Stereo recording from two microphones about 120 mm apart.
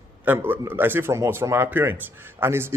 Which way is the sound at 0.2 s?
15° right (ahead or behind).